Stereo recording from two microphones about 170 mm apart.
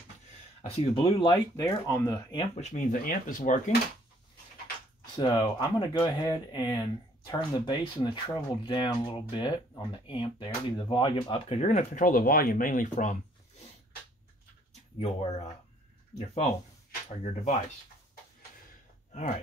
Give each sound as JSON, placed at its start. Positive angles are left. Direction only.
{"t": 0.6, "sound": "speech", "side_deg": 35}
{"t": 1.3, "sound": "speech", "side_deg": 20}
{"t": 2.3, "sound": "speech", "side_deg": 30}
{"t": 2.6, "sound": "speech", "side_deg": 50}
{"t": 5.1, "sound": "speech", "side_deg": 25}
{"t": 14.7, "sound": "a sound", "side_deg": 40}
{"t": 16.2, "sound": "speech", "side_deg": 45}